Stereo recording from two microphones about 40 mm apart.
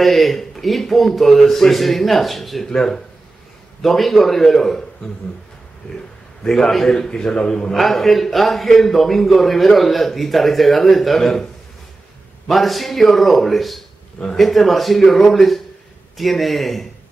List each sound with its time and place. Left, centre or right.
0.0 s a man's voice: centre
2.6 s a man's voice: centre
6.4 s a man's voice: centre
7.7 s a man's voice: centre
12.4 s a man's voice: centre